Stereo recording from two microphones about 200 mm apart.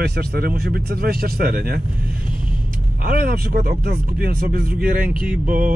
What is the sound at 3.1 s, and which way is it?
Speech, 50° right (ahead or behind).